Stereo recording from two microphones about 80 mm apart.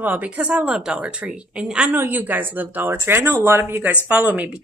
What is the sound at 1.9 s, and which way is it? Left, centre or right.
Speech, right.